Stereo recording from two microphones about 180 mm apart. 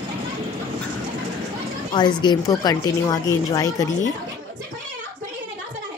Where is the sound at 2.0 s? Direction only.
25° left (ahead or behind).